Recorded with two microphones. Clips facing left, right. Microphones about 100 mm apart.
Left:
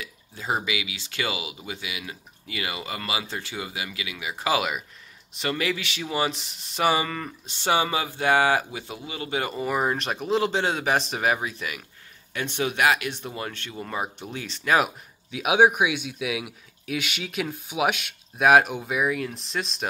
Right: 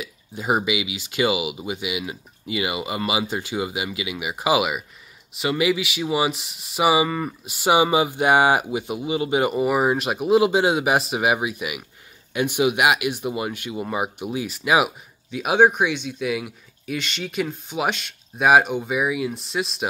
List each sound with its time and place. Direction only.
0.0 s speech: 15° right (ahead or behind)
15.3 s speech: centre (ahead or behind)